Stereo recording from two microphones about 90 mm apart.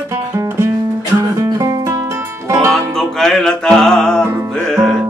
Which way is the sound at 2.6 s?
5° left (ahead or behind).